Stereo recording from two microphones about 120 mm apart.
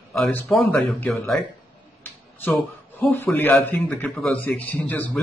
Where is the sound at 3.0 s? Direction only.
15° left (ahead or behind).